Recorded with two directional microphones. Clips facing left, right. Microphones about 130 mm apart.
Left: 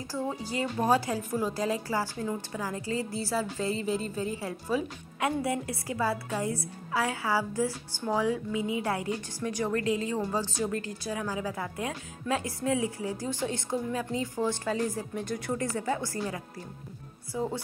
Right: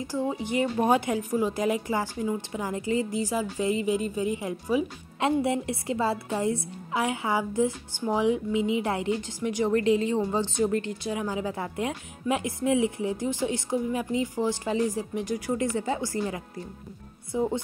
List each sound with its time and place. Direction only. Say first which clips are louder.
0.1 s a woman's voice: right 4 dB; 15° right (ahead or behind)